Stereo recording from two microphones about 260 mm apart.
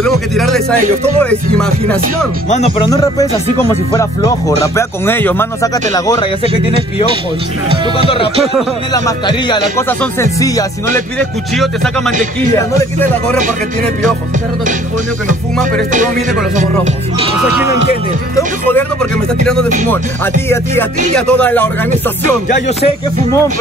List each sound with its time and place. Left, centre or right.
0.0 s speech: centre
2.5 s speech: left
2.9 s music: centre
8.9 s music: centre
11.1 s speech: centre
12.5 s music: centre
16.5 s music: right
18.3 s music: centre
21.1 s speech: centre